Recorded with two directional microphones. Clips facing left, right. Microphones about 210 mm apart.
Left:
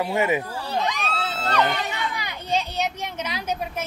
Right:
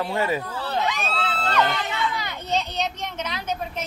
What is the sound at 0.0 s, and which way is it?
Speech, 15° left (ahead or behind).